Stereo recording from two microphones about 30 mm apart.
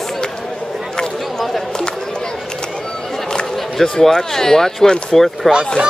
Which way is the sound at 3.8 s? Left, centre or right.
Centre.